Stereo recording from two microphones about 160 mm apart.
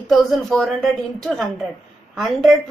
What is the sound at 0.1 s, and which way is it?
A woman's voice, centre (ahead or behind).